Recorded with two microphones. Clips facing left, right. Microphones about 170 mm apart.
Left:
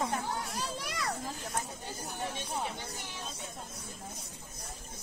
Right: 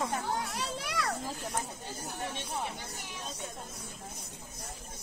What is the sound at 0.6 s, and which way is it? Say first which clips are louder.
Children playing: right 2 dB; 70° right (ahead or behind).